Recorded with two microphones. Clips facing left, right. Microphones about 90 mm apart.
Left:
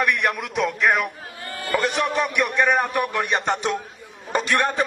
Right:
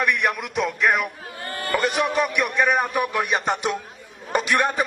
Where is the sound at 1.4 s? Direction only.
40° right (ahead or behind).